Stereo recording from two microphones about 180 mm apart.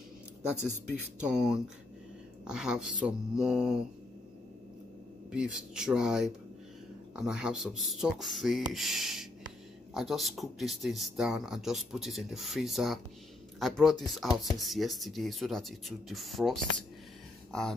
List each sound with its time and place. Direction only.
1.2 s speech: 5° right (ahead or behind)
5.3 s speech: 5° right (ahead or behind)